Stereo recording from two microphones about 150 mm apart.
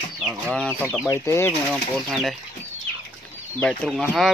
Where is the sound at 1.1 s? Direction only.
20° left (ahead or behind).